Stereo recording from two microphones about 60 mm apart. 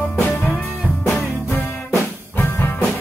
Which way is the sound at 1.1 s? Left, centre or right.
Left.